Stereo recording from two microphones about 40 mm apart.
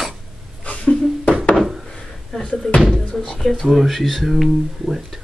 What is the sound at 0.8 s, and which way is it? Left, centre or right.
Music, left.